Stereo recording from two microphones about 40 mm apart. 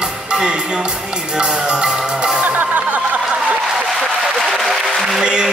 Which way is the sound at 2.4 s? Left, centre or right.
Right.